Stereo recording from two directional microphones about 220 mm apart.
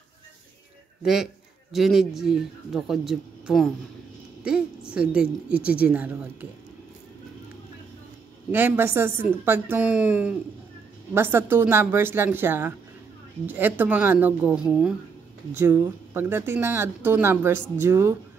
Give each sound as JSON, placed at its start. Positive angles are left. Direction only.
{"t": 1.0, "sound": "a man's voice", "side_deg": 0}
{"t": 8.5, "sound": "speech", "side_deg": -10}